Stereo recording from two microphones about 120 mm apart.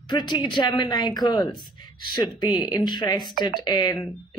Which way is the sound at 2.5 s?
40° left (ahead or behind).